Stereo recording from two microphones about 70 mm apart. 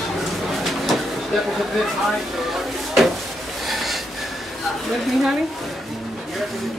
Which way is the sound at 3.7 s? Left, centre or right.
Centre.